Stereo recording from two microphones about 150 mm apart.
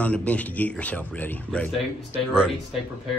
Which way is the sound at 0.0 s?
10° left (ahead or behind).